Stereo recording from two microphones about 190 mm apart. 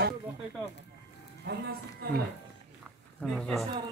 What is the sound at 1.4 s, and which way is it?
Speech, 60° right (ahead or behind).